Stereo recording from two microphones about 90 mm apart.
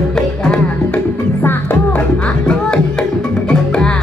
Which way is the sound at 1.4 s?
20° left (ahead or behind).